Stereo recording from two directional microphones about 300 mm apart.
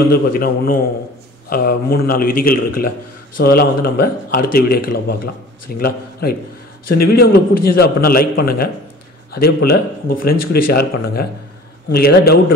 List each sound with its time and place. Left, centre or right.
0.1 s a man's voice: left